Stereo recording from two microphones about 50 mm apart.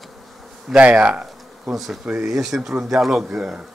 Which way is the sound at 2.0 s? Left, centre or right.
Centre.